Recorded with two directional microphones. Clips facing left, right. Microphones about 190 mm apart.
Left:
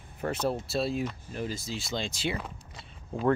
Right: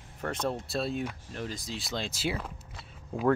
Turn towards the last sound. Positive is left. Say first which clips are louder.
# even
turn(degrees=-5)  # may be behind; listen again after turning